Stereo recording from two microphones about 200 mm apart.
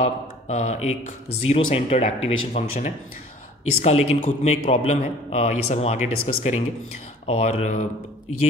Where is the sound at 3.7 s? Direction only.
30° left (ahead or behind).